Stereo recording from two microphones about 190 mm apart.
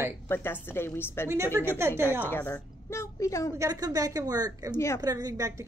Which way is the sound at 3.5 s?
20° right (ahead or behind).